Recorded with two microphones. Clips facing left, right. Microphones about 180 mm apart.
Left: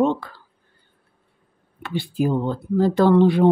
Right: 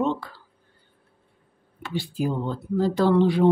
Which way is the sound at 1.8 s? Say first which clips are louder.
Left 4 dB; 60° left (ahead or behind).